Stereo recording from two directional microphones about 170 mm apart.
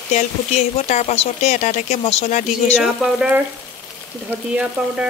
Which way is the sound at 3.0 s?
5° right (ahead or behind).